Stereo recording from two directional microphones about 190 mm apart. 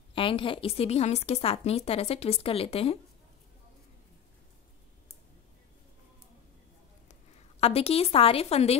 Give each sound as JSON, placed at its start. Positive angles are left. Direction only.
{"t": 0.1, "sound": "a woman's voice", "side_deg": 25}
{"t": 7.6, "sound": "a woman's voice", "side_deg": 30}